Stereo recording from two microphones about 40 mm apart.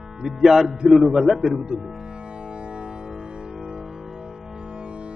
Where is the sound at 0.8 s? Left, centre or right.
Centre.